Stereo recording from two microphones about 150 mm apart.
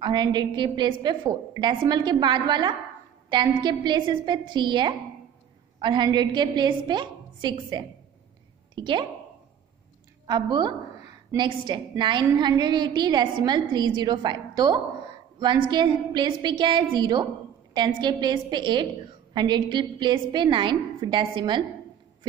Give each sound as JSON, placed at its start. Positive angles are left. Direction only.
{"t": 0.0, "sound": "a woman's voice", "side_deg": -30}
{"t": 10.2, "sound": "a woman's voice", "side_deg": -30}